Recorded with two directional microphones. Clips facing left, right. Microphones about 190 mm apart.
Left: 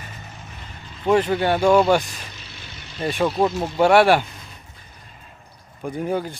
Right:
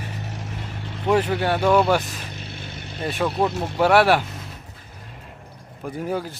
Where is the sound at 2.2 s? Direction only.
55° right (ahead or behind).